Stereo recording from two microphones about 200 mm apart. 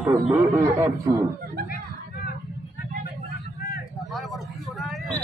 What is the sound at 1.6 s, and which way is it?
Chatter, 45° left (ahead or behind).